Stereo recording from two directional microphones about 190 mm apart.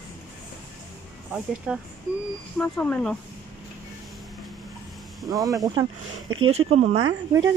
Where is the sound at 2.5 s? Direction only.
5° left (ahead or behind).